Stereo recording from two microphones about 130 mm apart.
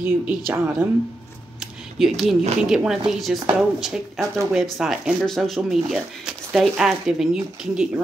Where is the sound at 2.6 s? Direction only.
5° right (ahead or behind).